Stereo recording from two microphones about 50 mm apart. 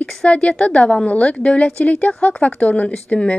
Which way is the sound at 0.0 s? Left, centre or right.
Left.